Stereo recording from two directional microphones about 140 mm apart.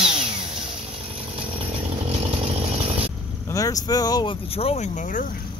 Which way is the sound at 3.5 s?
25° left (ahead or behind).